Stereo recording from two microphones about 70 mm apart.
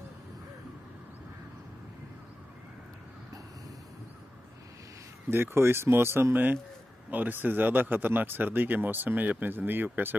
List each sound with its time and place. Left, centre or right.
5.3 s speech: right